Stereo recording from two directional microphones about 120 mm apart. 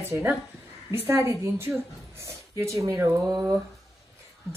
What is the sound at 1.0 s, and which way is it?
Speech, 20° right (ahead or behind).